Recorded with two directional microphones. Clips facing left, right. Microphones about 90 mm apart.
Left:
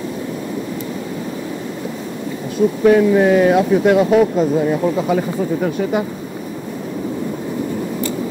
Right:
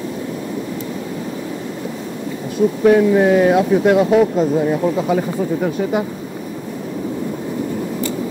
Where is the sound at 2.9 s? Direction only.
20° right (ahead or behind).